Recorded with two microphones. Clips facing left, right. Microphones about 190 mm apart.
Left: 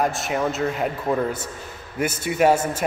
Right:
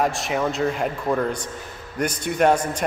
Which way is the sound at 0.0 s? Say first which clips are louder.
Even; centre (ahead or behind).